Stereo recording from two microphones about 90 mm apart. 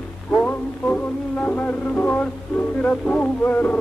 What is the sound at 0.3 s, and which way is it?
Music, 20° left (ahead or behind).